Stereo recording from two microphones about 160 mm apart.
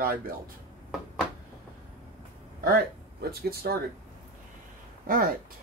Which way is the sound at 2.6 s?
70° right (ahead or behind).